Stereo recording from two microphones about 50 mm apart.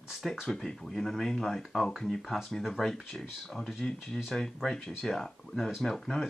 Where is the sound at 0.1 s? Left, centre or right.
Centre.